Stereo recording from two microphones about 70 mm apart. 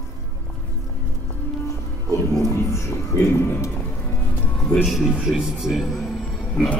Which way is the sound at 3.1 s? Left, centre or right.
Left.